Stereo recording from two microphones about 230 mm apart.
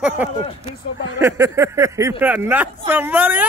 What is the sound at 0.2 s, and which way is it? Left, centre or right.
Speech, centre.